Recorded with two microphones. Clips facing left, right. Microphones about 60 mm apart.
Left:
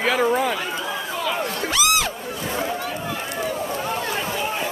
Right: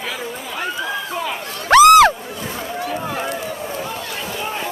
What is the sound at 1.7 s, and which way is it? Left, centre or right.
Crowd, right.